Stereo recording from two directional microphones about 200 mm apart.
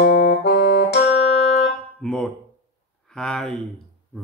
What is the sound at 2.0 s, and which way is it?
Speech, 5° left (ahead or behind).